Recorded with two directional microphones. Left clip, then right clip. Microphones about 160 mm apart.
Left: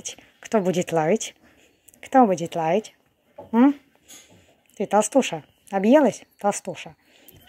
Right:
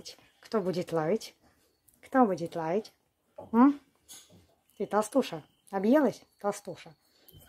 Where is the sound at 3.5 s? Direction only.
5° left (ahead or behind).